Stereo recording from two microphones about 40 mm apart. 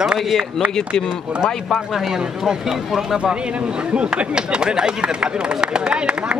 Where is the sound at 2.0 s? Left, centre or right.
Centre.